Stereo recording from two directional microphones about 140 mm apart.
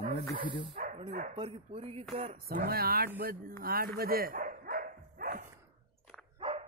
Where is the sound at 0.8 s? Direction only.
65° right (ahead or behind).